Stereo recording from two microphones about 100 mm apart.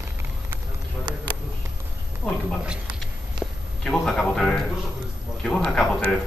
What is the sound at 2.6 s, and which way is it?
Speech, 10° right (ahead or behind).